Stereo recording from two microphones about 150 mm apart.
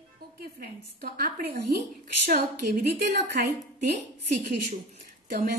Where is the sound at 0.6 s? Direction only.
80° right.